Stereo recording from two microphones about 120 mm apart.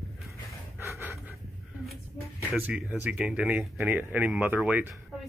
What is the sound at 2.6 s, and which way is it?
Speech, 10° right (ahead or behind).